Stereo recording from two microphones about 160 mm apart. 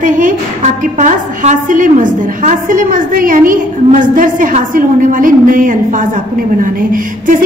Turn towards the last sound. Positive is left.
turn(degrees=-55)  # may be behind; listen again after turning